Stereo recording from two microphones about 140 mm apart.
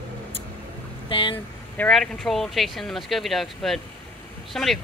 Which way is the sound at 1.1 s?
40° left (ahead or behind).